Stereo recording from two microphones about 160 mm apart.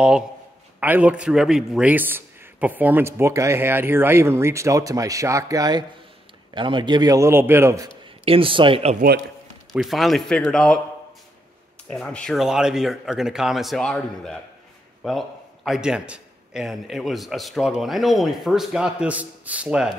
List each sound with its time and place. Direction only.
0.7 s a man's voice: 10° right (ahead or behind)
8.0 s speech: 35° right (ahead or behind)
9.7 s a man's voice: centre (ahead or behind)
11.9 s a man's voice: 5° left (ahead or behind)